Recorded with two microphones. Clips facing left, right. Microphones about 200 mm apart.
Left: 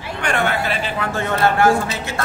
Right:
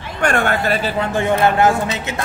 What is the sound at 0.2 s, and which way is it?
Speech, 50° right (ahead or behind).